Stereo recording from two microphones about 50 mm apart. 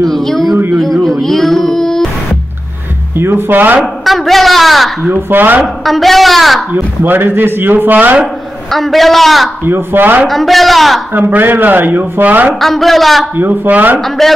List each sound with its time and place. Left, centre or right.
0.0 s a sound: centre
3.2 s speech: right
3.8 s a woman's voice: centre
5.0 s speech: right
5.9 s a woman's voice: centre
6.7 s speech: right
8.6 s a woman's voice: centre
9.7 s speech: right
10.2 s a woman's voice: centre
11.1 s speech: right
12.5 s a woman's voice: centre
13.4 s speech: right
14.0 s a woman's voice: centre